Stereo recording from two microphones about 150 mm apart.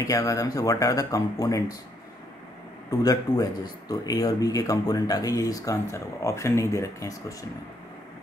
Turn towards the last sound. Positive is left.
turn(degrees=25)  # may be behind; listen again after turning